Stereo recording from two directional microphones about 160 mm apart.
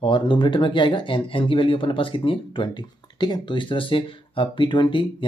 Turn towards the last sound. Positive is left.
turn(degrees=30)  # may be behind; listen again after turning